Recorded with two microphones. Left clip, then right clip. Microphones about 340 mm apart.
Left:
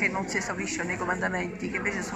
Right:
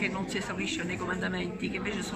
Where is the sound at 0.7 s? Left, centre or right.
Centre.